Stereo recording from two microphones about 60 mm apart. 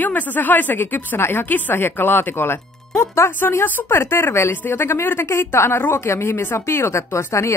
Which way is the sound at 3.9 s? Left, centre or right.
Left.